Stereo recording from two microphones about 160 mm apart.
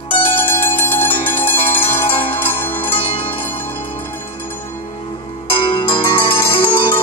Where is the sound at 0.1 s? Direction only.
35° left (ahead or behind).